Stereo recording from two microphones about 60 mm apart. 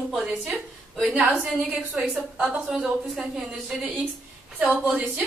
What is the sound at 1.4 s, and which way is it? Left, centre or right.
A woman's voice, right.